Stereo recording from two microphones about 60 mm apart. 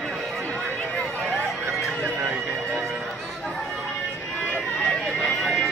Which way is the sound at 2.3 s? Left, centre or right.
Centre.